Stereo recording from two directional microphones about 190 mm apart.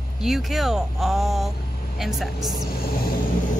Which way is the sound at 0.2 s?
Centre (ahead or behind).